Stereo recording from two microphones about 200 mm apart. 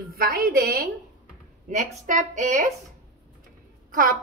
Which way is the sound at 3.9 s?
45° right (ahead or behind).